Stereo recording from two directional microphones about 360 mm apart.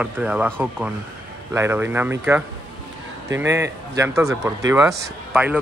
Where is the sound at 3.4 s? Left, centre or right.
Centre.